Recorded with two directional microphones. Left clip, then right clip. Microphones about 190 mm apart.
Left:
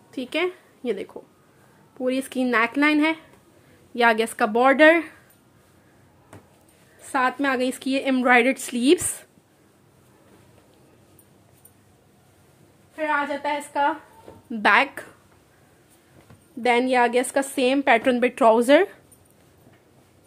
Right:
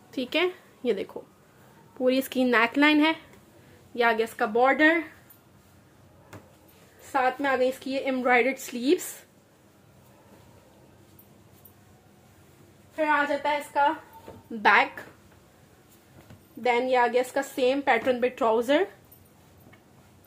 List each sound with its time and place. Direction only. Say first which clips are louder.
0.1 s a woman's voice: left 1 dB; 5° left (ahead or behind)
3.9 s a woman's voice: left 5 dB; 30° left (ahead or behind)
4.2 s a woman's voice: left 3 dB; 50° left (ahead or behind)
7.0 s a woman's voice: left 3 dB; 60° left (ahead or behind)
12.9 s a woman's voice: even; 60° left (ahead or behind)
16.6 s a woman's voice: left 3 dB; 65° left (ahead or behind)